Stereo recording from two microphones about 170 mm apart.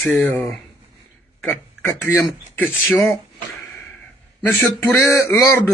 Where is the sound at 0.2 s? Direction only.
10° left (ahead or behind).